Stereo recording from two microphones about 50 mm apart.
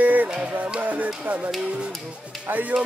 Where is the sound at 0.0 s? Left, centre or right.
Right.